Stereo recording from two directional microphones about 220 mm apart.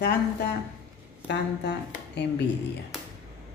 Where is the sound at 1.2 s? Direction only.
50° left (ahead or behind).